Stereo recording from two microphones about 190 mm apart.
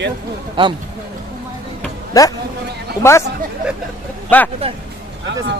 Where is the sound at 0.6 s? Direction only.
25° right (ahead or behind).